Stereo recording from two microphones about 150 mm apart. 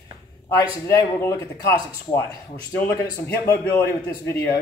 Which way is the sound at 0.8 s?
20° left (ahead or behind).